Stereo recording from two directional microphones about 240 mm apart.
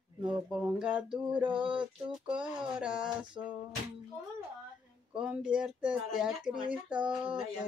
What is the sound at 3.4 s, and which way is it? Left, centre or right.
Music, centre.